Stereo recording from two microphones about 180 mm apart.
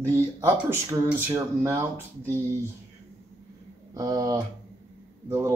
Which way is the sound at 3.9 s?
20° right (ahead or behind).